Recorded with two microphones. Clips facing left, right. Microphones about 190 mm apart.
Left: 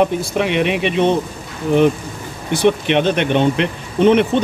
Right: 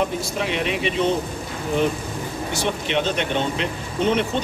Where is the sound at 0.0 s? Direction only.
65° left (ahead or behind).